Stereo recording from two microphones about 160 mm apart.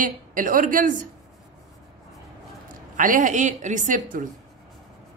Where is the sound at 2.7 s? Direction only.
60° right (ahead or behind).